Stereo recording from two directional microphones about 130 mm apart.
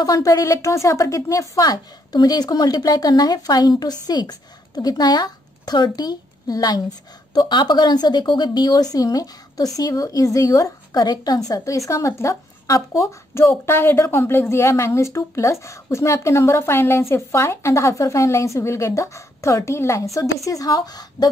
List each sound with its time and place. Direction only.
0.0 s a woman's voice: 30° left (ahead or behind)